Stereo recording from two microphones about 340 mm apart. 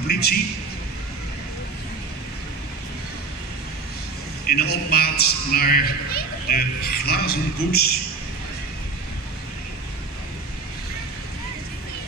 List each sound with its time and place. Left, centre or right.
0.1 s a man's voice: left
4.5 s a man's voice: left